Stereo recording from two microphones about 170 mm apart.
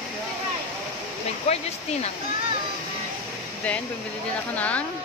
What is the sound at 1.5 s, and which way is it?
Speech, 40° left (ahead or behind).